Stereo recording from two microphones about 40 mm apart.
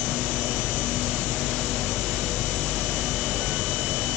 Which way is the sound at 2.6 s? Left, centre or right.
Centre.